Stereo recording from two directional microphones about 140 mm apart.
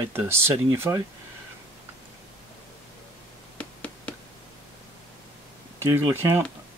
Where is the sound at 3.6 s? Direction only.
10° left (ahead or behind).